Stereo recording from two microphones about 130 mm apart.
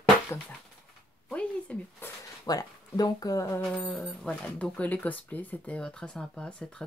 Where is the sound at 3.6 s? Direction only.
5° left (ahead or behind).